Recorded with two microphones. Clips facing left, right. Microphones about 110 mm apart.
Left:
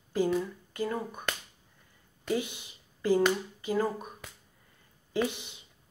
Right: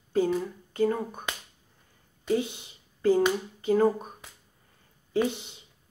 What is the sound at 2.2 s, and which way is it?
Speech, 25° right (ahead or behind).